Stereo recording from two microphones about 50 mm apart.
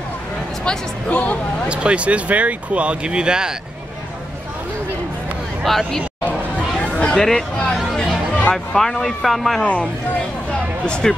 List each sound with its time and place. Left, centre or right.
0.7 s speech: left
1.7 s speech: right
5.6 s speech: centre
6.2 s chatter: left
7.2 s speech: centre
8.7 s speech: centre
9.6 s speech: left
10.5 s a sound: centre